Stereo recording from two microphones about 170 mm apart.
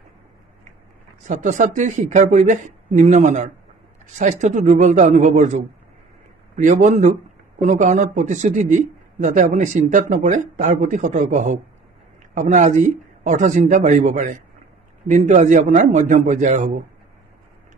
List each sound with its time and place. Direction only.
1.2 s speech: 50° right (ahead or behind)